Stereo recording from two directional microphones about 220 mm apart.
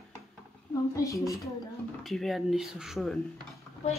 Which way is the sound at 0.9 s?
15° left (ahead or behind).